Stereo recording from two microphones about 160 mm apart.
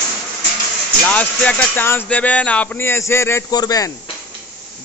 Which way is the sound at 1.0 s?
10° left (ahead or behind).